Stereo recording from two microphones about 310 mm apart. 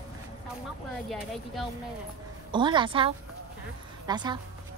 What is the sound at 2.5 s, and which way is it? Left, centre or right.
A woman's voice, centre.